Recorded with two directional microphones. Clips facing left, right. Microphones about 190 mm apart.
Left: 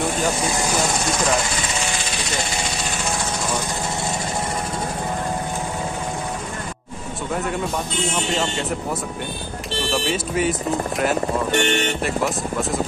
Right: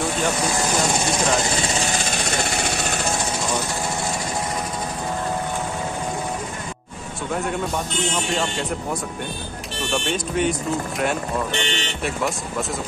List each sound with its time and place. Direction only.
1.8 s vehicle: 45° right (ahead or behind)
7.3 s speech: centre (ahead or behind)
9.8 s speech: 5° left (ahead or behind)
11.5 s speech: 50° left (ahead or behind)
12.0 s speech: centre (ahead or behind)